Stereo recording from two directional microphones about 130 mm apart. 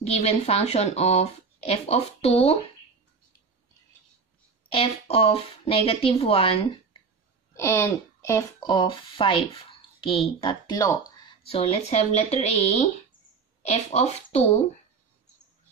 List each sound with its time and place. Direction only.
0.0 s speech: 55° left (ahead or behind)
4.6 s speech: 45° left (ahead or behind)
7.5 s speech: 20° left (ahead or behind); by 10.8 s 40° left (ahead or behind)
11.4 s a woman's voice: 50° left (ahead or behind)